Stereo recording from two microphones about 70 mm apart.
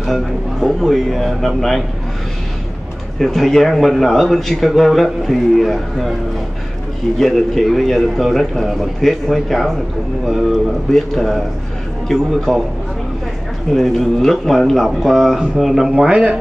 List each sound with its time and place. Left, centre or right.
0.0 s a man's voice: centre
3.2 s a man's voice: centre
7.2 s a man's voice: centre
13.7 s a man's voice: centre
16.1 s speech: centre